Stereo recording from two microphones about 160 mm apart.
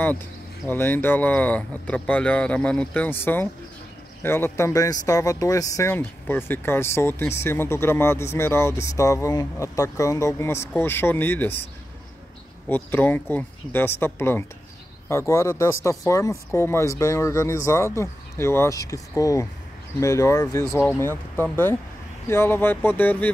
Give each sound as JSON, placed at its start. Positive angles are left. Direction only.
{"t": 0.7, "sound": "speech", "side_deg": 10}
{"t": 12.6, "sound": "speech", "side_deg": 10}